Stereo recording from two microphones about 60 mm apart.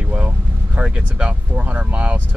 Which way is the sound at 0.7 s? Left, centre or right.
Centre.